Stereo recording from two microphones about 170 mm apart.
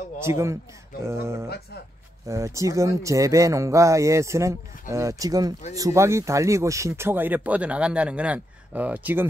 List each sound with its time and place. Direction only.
0.2 s speech: 15° right (ahead or behind)